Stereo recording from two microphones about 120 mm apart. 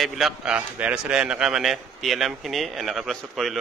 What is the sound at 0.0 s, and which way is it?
A man's voice, 5° right (ahead or behind).